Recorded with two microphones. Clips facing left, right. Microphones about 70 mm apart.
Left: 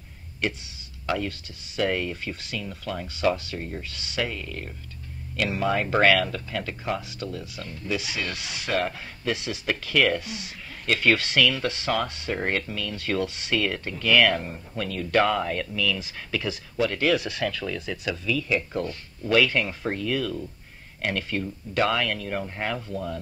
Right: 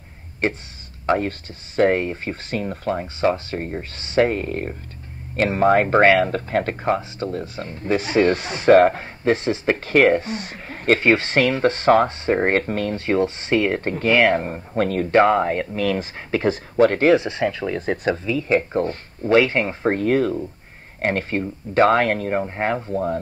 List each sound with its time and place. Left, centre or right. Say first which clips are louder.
0.4 s speech: right 6 dB; right
17.1 s speech: right 7 dB; right